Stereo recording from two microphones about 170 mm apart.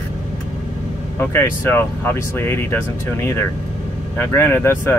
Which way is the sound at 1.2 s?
10° left (ahead or behind).